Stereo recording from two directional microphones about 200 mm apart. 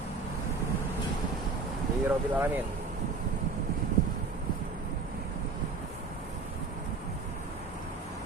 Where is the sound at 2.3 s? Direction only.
10° right (ahead or behind).